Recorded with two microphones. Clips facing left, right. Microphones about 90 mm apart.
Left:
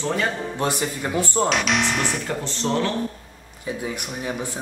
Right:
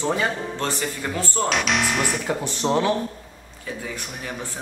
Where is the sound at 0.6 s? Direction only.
15° left (ahead or behind).